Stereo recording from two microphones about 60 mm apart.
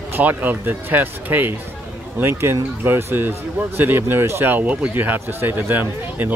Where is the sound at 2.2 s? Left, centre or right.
Right.